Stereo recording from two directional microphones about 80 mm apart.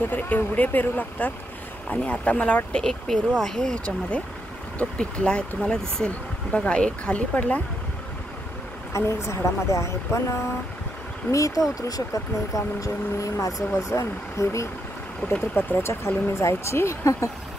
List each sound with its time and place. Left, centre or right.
0.1 s speech: left
2.8 s speech: centre
4.7 s speech: centre
8.9 s speech: left
15.2 s speech: left